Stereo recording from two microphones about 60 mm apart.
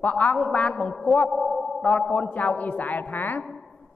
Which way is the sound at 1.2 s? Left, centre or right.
Centre.